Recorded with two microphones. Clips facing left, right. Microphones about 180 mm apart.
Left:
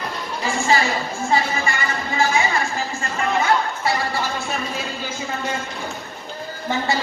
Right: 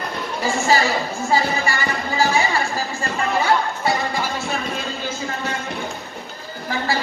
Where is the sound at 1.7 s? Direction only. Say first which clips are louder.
Right 1 dB; 35° right (ahead or behind).